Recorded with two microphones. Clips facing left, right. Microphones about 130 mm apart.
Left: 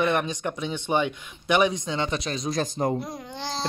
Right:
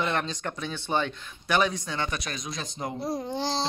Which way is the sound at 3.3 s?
40° right (ahead or behind).